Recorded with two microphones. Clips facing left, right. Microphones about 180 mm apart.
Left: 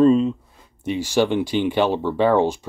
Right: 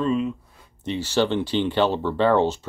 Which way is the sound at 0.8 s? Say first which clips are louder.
Left 3 dB; 10° left (ahead or behind).